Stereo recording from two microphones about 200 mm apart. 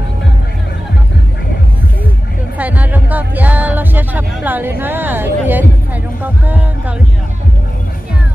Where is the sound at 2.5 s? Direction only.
10° right (ahead or behind).